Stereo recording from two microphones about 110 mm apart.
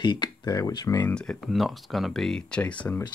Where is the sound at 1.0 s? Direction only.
15° left (ahead or behind).